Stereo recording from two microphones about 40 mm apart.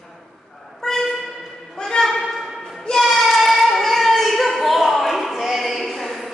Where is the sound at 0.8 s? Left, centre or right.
Centre.